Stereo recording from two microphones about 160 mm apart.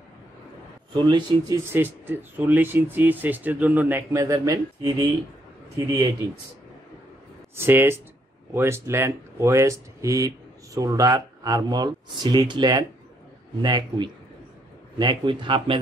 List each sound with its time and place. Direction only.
0.9 s speech: 30° right (ahead or behind)
1.6 s speech: 15° right (ahead or behind)
7.5 s speech: 15° right (ahead or behind); by 15.8 s 30° right (ahead or behind)